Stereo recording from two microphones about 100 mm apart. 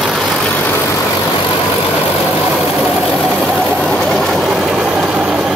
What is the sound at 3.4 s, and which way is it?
Vehicle, 5° left (ahead or behind).